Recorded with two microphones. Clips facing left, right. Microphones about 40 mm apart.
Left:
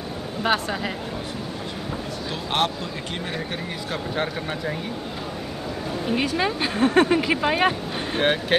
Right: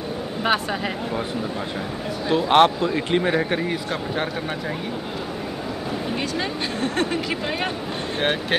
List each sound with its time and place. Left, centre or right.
0.4 s speech: centre
2.2 s a man's voice: right
3.9 s speech: centre
6.1 s speech: centre
8.2 s speech: centre